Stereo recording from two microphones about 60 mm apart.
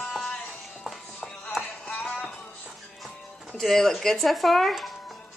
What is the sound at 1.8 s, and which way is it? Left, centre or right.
Music, left.